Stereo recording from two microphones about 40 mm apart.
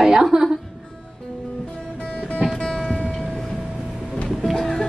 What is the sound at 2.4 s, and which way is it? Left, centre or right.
Music, centre.